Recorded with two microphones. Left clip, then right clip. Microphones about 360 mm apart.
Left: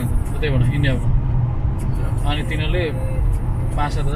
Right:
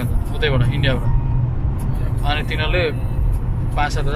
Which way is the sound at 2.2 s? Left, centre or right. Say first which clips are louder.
Right 4 dB; right.